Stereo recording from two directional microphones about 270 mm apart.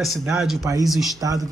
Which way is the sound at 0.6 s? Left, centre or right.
Centre.